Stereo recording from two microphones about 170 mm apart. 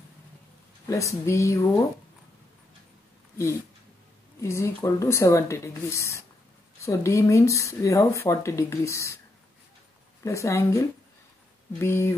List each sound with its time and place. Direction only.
0.8 s speech: 15° left (ahead or behind)
4.4 s speech: 15° left (ahead or behind)
10.2 s speech: 15° left (ahead or behind)
11.8 s speech: 15° left (ahead or behind)